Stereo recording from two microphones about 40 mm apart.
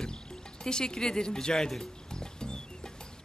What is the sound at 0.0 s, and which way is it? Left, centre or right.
Music, centre.